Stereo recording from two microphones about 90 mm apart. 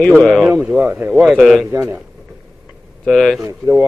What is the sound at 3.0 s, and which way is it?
Speech, centre (ahead or behind).